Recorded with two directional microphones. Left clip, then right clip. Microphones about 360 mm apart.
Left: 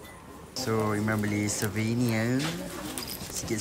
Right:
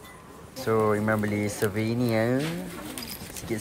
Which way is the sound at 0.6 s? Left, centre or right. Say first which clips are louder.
Right 5 dB; centre.